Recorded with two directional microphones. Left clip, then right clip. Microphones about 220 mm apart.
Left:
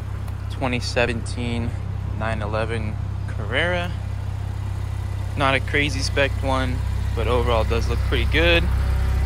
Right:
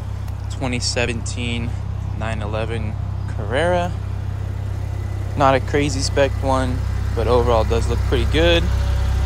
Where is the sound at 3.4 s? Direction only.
15° right (ahead or behind).